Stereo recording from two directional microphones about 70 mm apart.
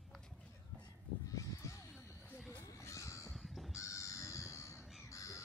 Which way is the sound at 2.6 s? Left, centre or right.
Left.